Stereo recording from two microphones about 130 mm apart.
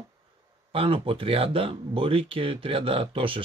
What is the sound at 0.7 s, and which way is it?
Speech, 45° right (ahead or behind).